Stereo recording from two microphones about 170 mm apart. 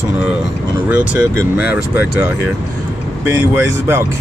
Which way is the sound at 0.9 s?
10° right (ahead or behind).